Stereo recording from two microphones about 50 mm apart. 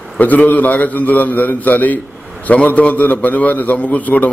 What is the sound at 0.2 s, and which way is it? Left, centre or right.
A man's voice, left.